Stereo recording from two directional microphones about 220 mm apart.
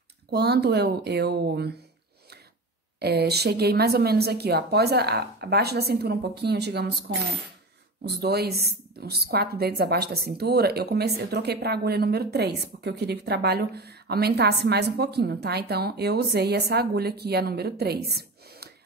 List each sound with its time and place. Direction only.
0.3 s a woman's voice: 50° right (ahead or behind)
3.0 s a woman's voice: 45° right (ahead or behind)
8.0 s a woman's voice: 45° right (ahead or behind)